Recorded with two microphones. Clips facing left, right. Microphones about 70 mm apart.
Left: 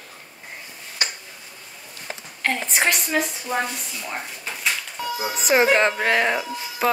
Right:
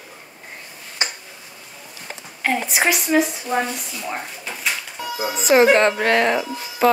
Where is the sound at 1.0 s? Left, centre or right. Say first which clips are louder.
Right 2 dB; right.